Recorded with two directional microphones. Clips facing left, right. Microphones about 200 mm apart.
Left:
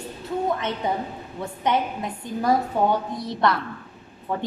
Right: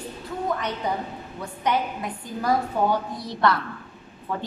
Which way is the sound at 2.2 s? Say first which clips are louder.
Left 2 dB; 25° left (ahead or behind).